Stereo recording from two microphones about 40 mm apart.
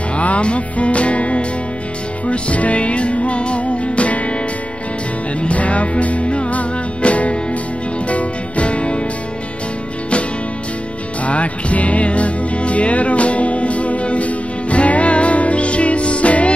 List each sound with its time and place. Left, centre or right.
0.1 s music: left
5.4 s music: left
11.2 s music: left